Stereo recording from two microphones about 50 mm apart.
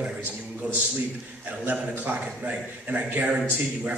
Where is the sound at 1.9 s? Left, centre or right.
Right.